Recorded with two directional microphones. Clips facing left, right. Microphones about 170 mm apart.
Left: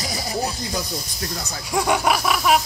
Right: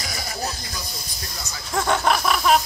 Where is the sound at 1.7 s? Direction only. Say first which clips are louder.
Left 1 dB; 15° left (ahead or behind).